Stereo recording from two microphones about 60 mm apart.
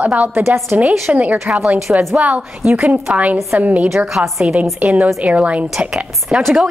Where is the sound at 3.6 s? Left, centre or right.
Right.